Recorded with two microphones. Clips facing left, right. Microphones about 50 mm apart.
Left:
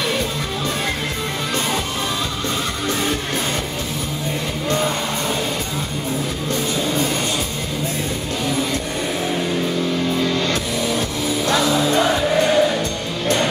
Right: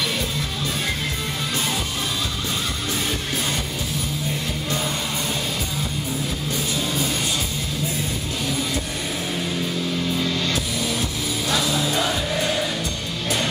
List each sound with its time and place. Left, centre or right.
6.5 s music: centre
10.1 s music: centre
10.5 s music: centre